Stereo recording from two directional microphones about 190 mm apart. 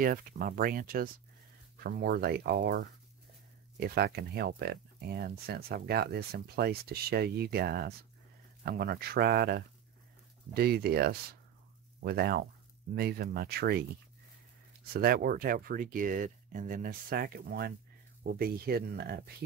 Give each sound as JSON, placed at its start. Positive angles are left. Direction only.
{"t": 0.0, "sound": "speech", "side_deg": -50}
{"t": 14.9, "sound": "speech", "side_deg": -50}